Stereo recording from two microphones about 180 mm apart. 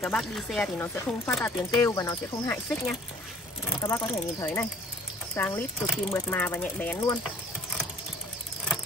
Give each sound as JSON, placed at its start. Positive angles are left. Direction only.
{"t": 0.0, "sound": "speech", "side_deg": 0}